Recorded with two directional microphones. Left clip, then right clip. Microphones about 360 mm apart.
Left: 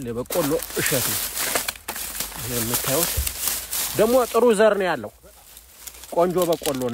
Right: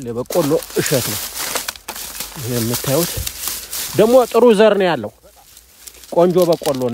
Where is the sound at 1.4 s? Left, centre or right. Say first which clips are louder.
Right 1 dB; centre.